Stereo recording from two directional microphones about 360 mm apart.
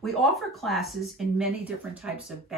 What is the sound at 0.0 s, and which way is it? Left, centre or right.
Speech, centre.